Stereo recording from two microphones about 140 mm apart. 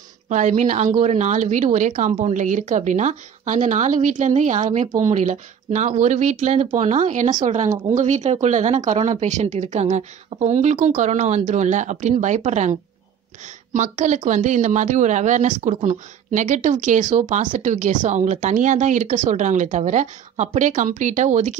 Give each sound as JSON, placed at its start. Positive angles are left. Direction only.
{"t": 0.3, "sound": "a woman's voice", "side_deg": -60}
{"t": 13.7, "sound": "a woman's voice", "side_deg": -60}